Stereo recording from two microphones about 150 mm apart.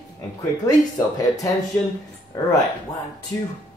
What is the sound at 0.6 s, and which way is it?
Speech, 25° left (ahead or behind).